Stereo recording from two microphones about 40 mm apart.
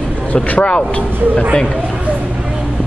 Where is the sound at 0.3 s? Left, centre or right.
Left.